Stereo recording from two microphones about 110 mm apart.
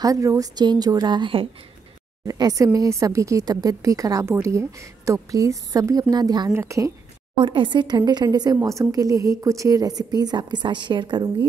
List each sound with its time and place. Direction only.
0.0 s speech: 30° right (ahead or behind); by 1.5 s 50° right (ahead or behind)
2.2 s speech: 35° right (ahead or behind)
6.5 s speech: 25° right (ahead or behind)
7.3 s speech: 45° right (ahead or behind)